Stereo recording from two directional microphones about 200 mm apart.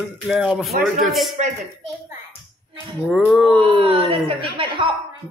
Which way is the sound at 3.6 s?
25° right (ahead or behind).